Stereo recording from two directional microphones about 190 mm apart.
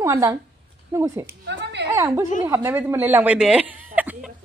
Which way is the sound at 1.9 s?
15° right (ahead or behind).